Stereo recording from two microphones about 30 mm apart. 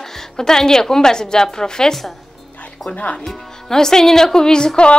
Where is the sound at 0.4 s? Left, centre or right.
Centre.